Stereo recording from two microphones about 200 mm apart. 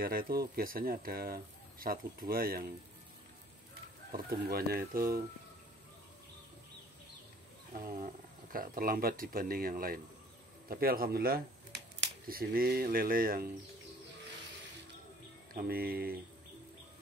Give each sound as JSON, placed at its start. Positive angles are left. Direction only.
{"t": 0.0, "sound": "speech", "side_deg": -45}
{"t": 4.1, "sound": "speech", "side_deg": -50}
{"t": 7.7, "sound": "speech", "side_deg": -45}
{"t": 15.5, "sound": "speech", "side_deg": -50}